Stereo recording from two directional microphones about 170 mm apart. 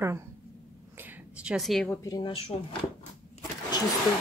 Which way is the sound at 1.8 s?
20° left (ahead or behind).